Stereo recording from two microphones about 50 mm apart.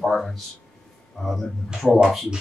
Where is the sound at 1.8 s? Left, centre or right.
Right.